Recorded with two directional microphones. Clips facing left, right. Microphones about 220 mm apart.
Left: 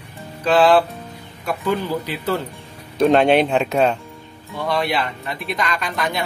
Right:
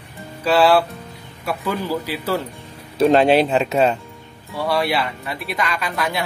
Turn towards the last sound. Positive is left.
turn(degrees=-5)  # may be behind; listen again after turning